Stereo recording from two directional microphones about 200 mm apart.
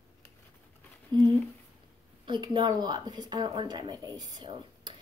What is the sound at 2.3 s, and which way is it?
A woman's voice, 25° right (ahead or behind).